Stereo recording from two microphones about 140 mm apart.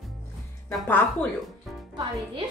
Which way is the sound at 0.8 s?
15° left (ahead or behind).